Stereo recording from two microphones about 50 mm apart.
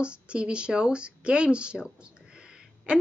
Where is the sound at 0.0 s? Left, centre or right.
Right.